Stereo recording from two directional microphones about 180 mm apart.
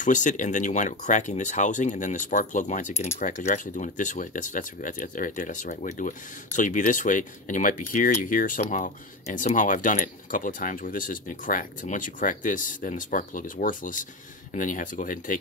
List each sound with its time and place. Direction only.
0.0 s speech: 45° left (ahead or behind)